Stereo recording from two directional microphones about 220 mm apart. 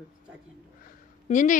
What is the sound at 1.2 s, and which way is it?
Speech, 35° left (ahead or behind).